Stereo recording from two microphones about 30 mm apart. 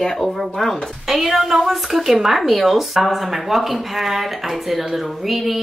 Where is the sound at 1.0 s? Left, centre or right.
Centre.